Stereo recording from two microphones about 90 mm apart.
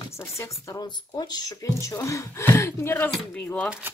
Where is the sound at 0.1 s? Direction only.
35° left (ahead or behind).